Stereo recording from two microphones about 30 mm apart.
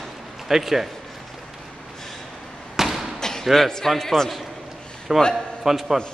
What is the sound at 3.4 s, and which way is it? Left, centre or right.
Speech, centre.